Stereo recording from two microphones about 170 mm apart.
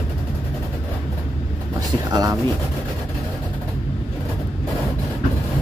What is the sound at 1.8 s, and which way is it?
Vehicle, 20° right (ahead or behind).